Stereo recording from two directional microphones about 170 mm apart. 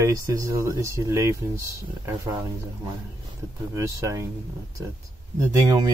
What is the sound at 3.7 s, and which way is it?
Speech, 15° right (ahead or behind).